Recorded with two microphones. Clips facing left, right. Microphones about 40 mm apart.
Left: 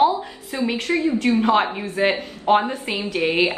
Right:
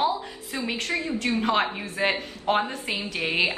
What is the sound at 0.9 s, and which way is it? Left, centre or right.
Speech, left.